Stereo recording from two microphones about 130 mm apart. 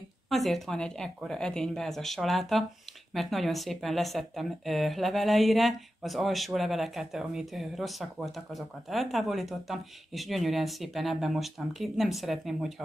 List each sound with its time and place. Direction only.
0.3 s speech: centre (ahead or behind)